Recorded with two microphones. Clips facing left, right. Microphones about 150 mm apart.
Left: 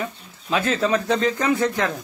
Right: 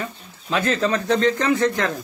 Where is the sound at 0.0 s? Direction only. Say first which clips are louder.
Left 1 dB; centre (ahead or behind).